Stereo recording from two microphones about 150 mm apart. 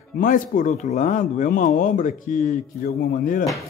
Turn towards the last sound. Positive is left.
turn(degrees=75)  # may be behind; listen again after turning